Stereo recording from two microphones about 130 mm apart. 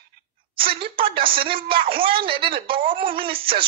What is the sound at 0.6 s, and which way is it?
Speech, 45° right (ahead or behind).